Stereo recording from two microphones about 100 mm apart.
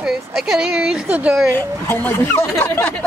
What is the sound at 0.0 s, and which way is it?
Speech, 5° right (ahead or behind).